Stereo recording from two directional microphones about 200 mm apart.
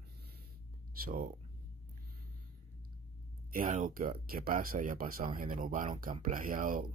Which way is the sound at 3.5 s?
40° right (ahead or behind).